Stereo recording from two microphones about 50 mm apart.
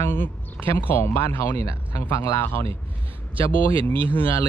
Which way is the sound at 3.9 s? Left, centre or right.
Left.